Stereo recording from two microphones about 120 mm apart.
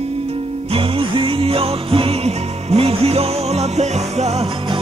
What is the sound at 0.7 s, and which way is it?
Music, 45° right (ahead or behind).